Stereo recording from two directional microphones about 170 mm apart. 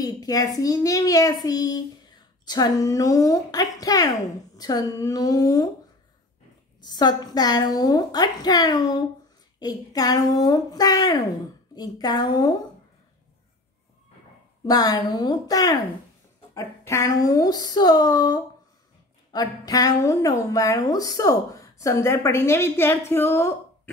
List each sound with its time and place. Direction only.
0.0 s a woman's voice: 20° left (ahead or behind)
6.8 s a woman's voice: 25° left (ahead or behind)
14.7 s a woman's voice: 20° left (ahead or behind)